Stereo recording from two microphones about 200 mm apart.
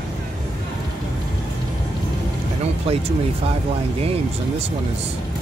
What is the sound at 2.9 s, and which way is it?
Speech, 30° right (ahead or behind).